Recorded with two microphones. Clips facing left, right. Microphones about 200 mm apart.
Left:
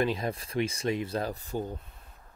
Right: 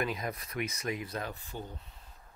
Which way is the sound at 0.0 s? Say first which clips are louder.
Left 6 dB; 30° left (ahead or behind).